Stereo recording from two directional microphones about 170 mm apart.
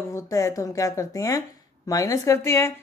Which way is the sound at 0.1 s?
20° left (ahead or behind).